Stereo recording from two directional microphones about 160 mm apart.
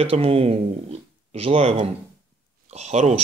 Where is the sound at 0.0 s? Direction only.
35° right (ahead or behind).